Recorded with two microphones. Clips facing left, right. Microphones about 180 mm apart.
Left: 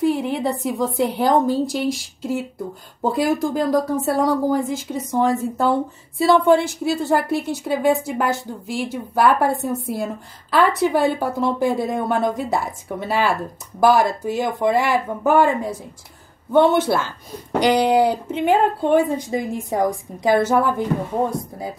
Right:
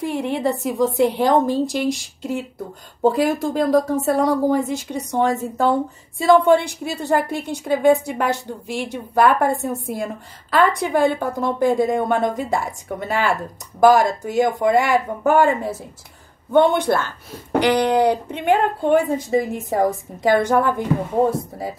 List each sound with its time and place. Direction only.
0.0 s a woman's voice: centre (ahead or behind)